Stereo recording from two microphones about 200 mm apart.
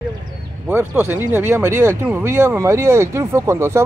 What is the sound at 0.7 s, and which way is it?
Speech, 10° right (ahead or behind).